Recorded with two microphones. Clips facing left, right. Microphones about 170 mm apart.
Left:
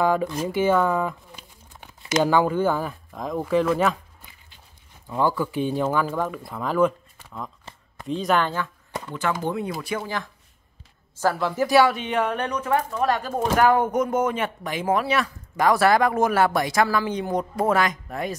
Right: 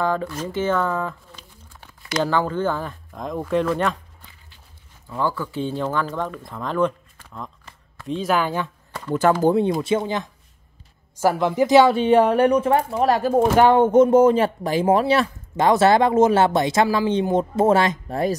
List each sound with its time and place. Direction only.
0.0 s speech: 15° left (ahead or behind)
5.0 s speech: 15° left (ahead or behind); by 8.5 s 5° right (ahead or behind)
9.1 s speech: 40° right (ahead or behind)
9.8 s speech: 25° right (ahead or behind)